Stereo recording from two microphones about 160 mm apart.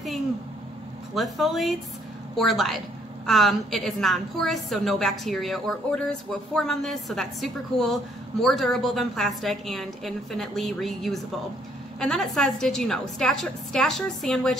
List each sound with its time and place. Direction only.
1.1 s a woman's voice: centre (ahead or behind)